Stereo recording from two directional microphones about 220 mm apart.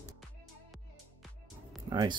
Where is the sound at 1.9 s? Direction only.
20° right (ahead or behind).